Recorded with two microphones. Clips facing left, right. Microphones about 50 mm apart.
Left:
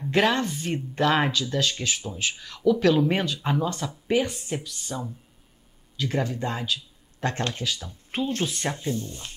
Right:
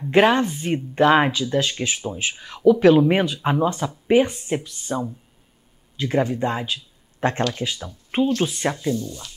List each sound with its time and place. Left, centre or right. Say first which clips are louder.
0.1 s speech: right 6 dB; right
8.9 s speech: right 5 dB; left